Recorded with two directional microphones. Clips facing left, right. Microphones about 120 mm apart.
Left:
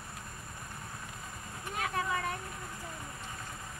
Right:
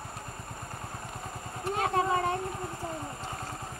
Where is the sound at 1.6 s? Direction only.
30° right (ahead or behind).